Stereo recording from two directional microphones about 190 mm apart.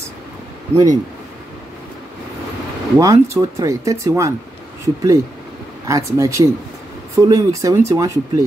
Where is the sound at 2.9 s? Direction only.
15° right (ahead or behind).